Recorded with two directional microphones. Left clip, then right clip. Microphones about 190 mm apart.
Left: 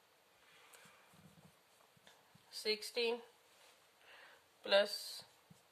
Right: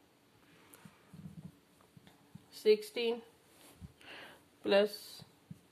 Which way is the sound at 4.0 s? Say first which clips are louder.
Right 9 dB; 40° right (ahead or behind).